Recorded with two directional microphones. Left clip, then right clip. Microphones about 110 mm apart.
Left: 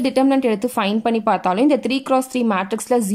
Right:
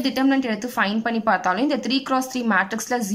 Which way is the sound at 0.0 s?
40° left (ahead or behind).